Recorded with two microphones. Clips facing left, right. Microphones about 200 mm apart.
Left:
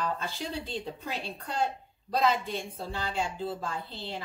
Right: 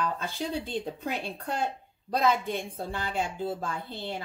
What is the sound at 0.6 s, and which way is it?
A woman's voice, 50° right (ahead or behind).